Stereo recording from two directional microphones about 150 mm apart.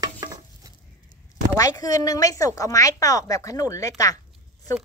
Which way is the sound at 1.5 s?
20° left (ahead or behind).